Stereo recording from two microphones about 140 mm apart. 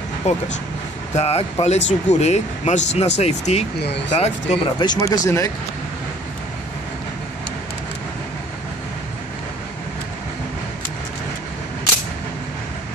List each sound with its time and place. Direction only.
0.3 s speech: 55° left (ahead or behind)
4.8 s speech: 25° left (ahead or behind)